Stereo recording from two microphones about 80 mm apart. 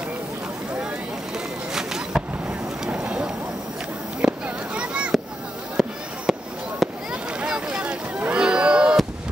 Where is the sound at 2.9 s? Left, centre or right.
Centre.